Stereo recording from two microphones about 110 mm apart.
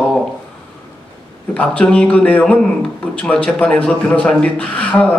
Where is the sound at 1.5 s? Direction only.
10° left (ahead or behind).